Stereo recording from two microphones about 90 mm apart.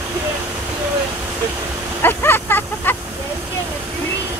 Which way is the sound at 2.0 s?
25° left (ahead or behind).